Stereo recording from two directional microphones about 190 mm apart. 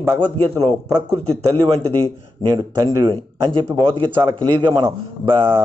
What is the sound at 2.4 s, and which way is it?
Speech, 15° right (ahead or behind).